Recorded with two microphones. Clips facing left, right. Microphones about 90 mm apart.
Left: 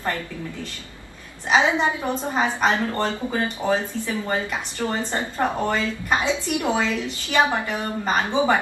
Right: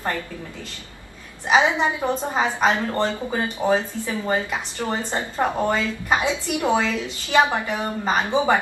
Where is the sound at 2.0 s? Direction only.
15° right (ahead or behind).